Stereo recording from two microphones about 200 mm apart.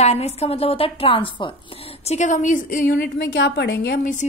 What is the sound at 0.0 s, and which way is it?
A woman's voice, 30° left (ahead or behind).